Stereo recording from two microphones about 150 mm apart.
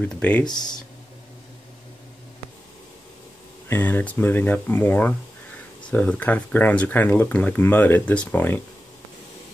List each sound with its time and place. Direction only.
0.0 s speech: 10° left (ahead or behind)
0.5 s speech: 30° left (ahead or behind)
3.6 s speech: 15° left (ahead or behind)